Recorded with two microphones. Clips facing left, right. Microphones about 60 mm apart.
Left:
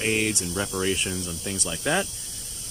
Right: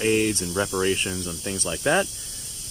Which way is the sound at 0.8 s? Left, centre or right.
Right.